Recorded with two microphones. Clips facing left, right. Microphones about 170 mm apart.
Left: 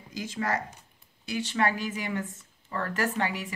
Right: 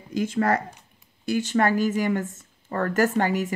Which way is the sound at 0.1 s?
55° right (ahead or behind).